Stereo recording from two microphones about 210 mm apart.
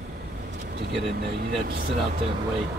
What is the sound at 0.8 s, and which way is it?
Speech, 55° right (ahead or behind).